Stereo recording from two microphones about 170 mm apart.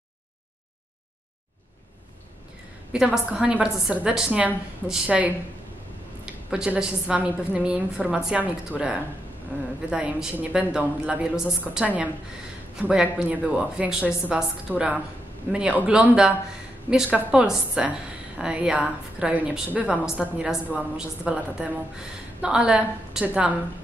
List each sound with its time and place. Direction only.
2.9 s a woman's voice: 5° right (ahead or behind)